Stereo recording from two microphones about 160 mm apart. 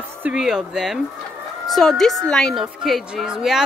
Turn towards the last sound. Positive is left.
turn(degrees=-5)  # may be behind; listen again after turning